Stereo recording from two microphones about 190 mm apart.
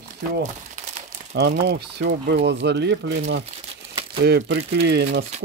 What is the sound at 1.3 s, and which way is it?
Speech, 60° right (ahead or behind).